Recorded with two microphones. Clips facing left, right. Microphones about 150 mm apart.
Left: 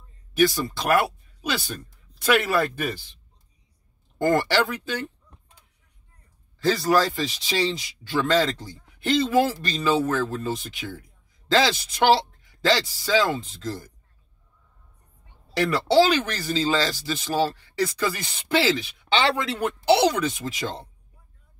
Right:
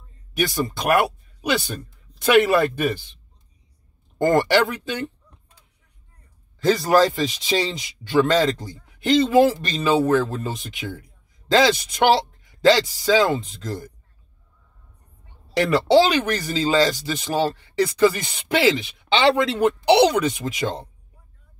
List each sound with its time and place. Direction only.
0.4 s speech: 15° right (ahead or behind)
4.4 s speech: 20° right (ahead or behind)
6.6 s speech: 20° right (ahead or behind)
15.5 s speech: 20° right (ahead or behind)